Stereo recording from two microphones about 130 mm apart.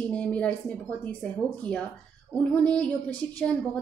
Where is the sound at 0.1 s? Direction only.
10° left (ahead or behind).